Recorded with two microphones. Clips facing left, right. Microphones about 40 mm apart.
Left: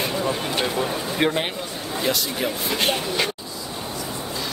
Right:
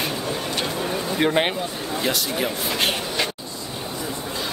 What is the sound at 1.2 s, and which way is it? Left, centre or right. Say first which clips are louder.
Speech: even; centre.